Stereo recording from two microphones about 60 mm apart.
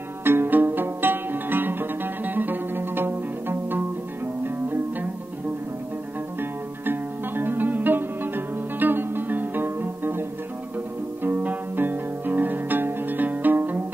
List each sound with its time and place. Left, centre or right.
0.2 s music: right
6.9 s music: right
11.2 s music: right